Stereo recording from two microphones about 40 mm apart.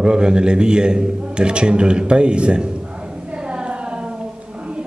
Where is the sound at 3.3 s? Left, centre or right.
Right.